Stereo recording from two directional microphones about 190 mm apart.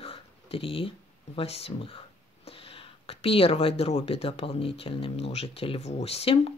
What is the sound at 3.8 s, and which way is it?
Speech, 35° left (ahead or behind).